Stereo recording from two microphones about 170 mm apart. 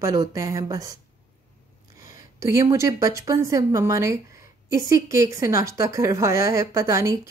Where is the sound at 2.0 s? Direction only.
20° right (ahead or behind).